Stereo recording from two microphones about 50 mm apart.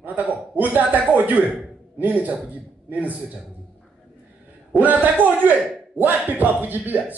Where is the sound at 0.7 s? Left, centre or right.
Right.